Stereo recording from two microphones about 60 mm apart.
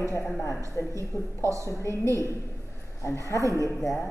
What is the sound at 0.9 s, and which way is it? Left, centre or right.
A woman's voice, right.